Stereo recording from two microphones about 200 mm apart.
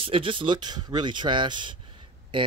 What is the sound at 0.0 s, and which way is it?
Speech, 25° right (ahead or behind).